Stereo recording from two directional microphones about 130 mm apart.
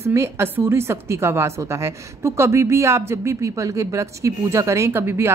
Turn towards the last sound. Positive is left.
turn(degrees=-20)  # may be behind; listen again after turning